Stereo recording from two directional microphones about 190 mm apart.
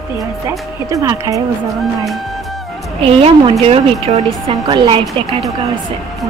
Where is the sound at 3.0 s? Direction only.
30° right (ahead or behind).